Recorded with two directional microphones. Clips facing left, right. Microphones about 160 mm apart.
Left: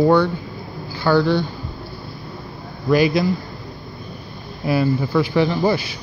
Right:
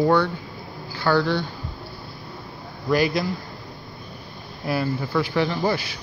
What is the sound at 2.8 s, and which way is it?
Speech, 5° left (ahead or behind).